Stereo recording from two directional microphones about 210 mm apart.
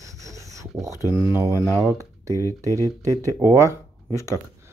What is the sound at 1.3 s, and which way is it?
Speech, 10° right (ahead or behind).